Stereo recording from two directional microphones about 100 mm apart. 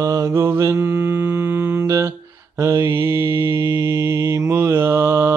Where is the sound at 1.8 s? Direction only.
30° right (ahead or behind).